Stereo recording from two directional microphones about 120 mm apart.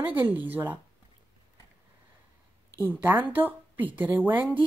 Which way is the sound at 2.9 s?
15° right (ahead or behind).